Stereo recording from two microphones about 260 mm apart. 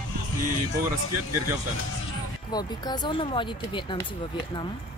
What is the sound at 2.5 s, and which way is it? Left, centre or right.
Speech, centre.